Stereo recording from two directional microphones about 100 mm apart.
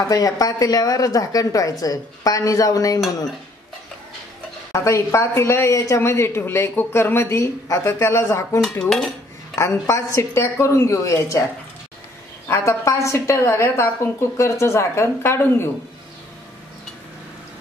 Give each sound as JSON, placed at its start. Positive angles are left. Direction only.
{"t": 0.1, "sound": "a woman's voice", "side_deg": 35}
{"t": 4.8, "sound": "speech", "side_deg": 30}
{"t": 8.8, "sound": "cutlery", "side_deg": 0}
{"t": 9.6, "sound": "speech", "side_deg": 30}
{"t": 12.4, "sound": "speech", "side_deg": 25}